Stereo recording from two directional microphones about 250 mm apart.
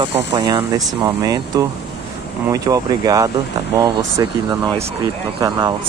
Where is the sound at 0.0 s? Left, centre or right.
Centre.